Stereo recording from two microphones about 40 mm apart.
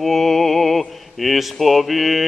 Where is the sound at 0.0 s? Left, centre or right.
Centre.